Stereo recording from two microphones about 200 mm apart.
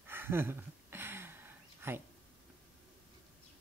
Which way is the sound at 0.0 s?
10° right (ahead or behind).